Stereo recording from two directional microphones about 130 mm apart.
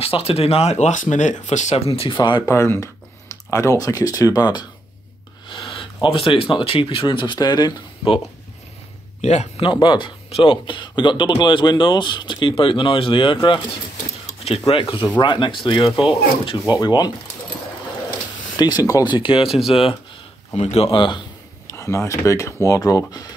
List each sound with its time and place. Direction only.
0.0 s speech: 50° left (ahead or behind); by 1.8 s 65° left (ahead or behind)
1.9 s speech: 45° left (ahead or behind)
2.4 s speech: 20° left (ahead or behind); by 8.2 s 35° left (ahead or behind)
9.2 s speech: 60° left (ahead or behind)
9.6 s speech: 40° left (ahead or behind)
14.2 s a sound: 50° left (ahead or behind)
15.1 s speech: 40° left (ahead or behind)
18.6 s speech: 30° left (ahead or behind); by 20.0 s 45° left (ahead or behind)
20.5 s speech: 55° left (ahead or behind); by 21.2 s 40° left (ahead or behind)
21.6 s speech: 25° left (ahead or behind)